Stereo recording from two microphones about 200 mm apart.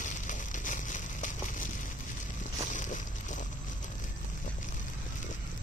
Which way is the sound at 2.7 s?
40° left (ahead or behind).